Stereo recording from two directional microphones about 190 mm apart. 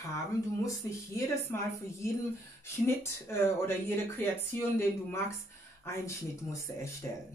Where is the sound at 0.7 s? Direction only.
15° left (ahead or behind).